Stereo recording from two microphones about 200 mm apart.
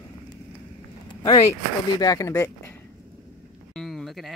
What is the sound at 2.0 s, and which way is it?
Speech, 15° left (ahead or behind).